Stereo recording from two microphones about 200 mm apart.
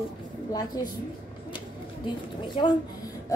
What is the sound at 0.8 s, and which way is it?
Speech, 15° left (ahead or behind).